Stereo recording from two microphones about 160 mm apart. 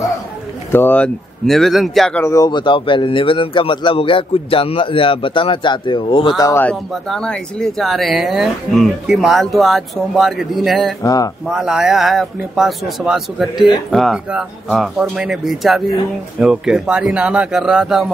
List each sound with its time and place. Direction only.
0.7 s speech: 10° left (ahead or behind)
2.2 s speech: 20° left (ahead or behind)
6.6 s speech: 5° left (ahead or behind)
11.0 s speech: 20° left (ahead or behind)
11.4 s speech: 5° right (ahead or behind)